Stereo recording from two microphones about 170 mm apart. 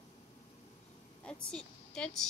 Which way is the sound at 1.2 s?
5° left (ahead or behind).